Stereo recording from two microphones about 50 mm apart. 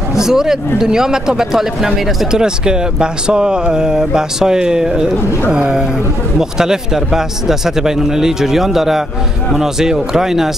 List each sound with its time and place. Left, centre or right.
0.1 s speech: centre